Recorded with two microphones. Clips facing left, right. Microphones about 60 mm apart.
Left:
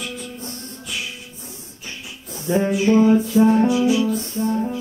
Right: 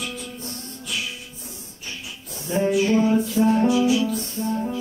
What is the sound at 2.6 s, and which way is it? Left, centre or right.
Music, centre.